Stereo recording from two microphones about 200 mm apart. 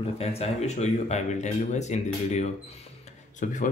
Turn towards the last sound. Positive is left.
turn(degrees=40)  # may be behind; listen again after turning